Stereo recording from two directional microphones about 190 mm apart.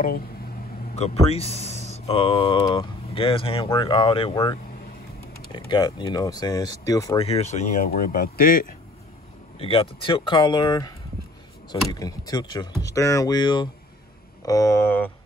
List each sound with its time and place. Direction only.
0.9 s speech: 35° left (ahead or behind)
5.5 s speech: 25° left (ahead or behind)
7.2 s speech: 30° left (ahead or behind); by 8.6 s 50° left (ahead or behind)
9.6 s speech: 30° left (ahead or behind); by 15.0 s 10° left (ahead or behind)